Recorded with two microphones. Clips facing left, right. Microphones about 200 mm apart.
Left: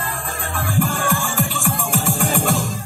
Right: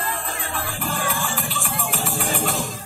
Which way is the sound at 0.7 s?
45° left (ahead or behind).